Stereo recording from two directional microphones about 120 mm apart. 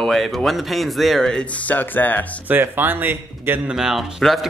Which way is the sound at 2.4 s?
15° right (ahead or behind).